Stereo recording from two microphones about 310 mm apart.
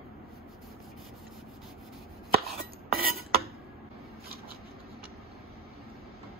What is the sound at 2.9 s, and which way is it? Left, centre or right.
Dishes, right.